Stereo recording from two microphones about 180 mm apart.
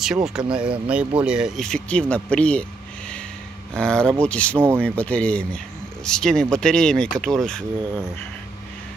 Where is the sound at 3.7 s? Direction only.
5° left (ahead or behind).